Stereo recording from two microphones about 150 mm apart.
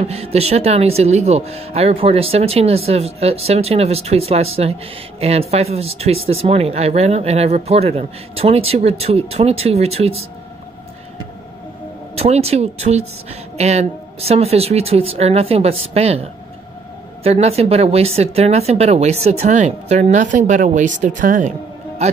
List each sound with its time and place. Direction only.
0.0 s speech: 45° right (ahead or behind)
12.2 s speech: 45° right (ahead or behind)